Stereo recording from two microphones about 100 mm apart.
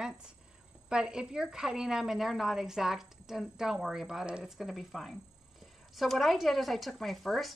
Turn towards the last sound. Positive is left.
turn(degrees=0)  # may be behind; listen again after turning